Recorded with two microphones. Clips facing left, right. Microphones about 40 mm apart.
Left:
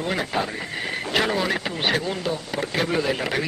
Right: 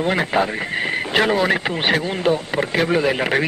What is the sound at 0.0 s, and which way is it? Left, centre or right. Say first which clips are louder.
Speech: right 6 dB; right.